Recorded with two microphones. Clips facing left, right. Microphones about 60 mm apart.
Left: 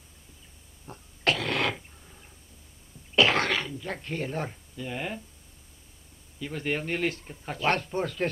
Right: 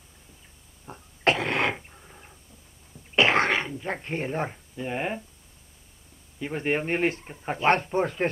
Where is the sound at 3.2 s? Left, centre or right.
Right.